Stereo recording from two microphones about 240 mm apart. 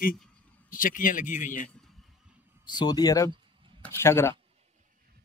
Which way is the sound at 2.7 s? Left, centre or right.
Centre.